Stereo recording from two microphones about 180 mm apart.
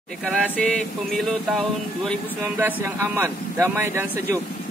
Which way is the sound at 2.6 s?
10° right (ahead or behind).